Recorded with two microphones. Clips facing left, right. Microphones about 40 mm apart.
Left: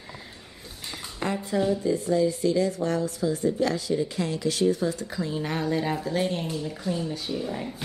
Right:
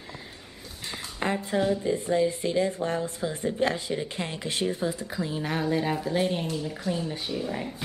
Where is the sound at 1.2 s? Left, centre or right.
Right.